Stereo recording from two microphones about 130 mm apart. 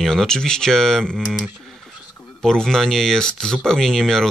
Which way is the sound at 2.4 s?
5° left (ahead or behind).